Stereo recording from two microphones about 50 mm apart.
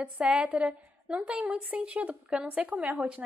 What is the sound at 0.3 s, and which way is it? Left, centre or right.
A woman's voice, right.